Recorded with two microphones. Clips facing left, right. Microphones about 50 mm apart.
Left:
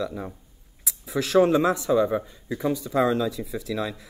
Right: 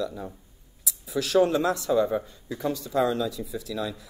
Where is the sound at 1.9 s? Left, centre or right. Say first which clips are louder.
Left 2 dB; centre; by 3.9 s left.